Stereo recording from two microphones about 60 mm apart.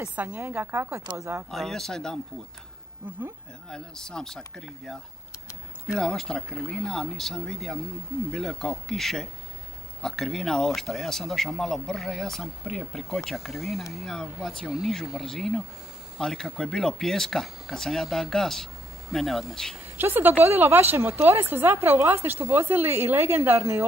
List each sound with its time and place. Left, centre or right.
0.1 s a woman's voice: right
0.5 s a woman's voice: right
1.5 s speech: centre
3.6 s speech: centre
5.9 s speech: centre
20.0 s a woman's voice: right